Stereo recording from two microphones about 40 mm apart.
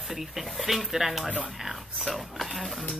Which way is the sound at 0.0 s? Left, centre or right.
Centre.